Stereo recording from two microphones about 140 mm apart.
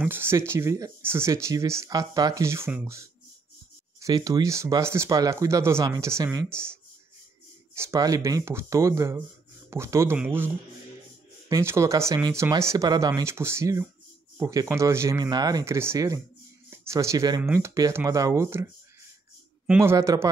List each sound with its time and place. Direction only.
0.0 s a man's voice: 15° right (ahead or behind)
19.8 s speech: 20° right (ahead or behind)